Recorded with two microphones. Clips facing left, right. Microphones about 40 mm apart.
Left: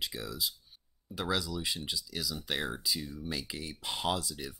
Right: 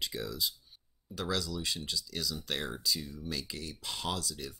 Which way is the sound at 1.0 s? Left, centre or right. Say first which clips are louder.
Left 1 dB; centre.